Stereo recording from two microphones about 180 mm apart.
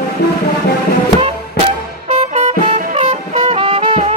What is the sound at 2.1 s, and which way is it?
Music, 40° right (ahead or behind).